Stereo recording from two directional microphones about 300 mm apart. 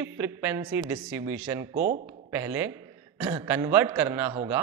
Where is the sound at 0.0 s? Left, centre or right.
Centre.